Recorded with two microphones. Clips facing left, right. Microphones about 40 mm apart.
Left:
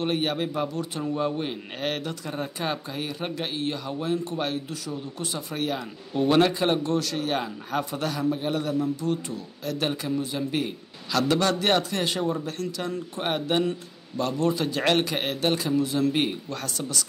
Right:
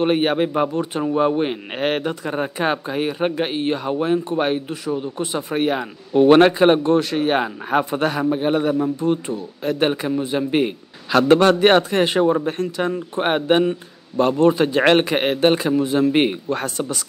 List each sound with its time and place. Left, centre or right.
0.0 s a man's voice: right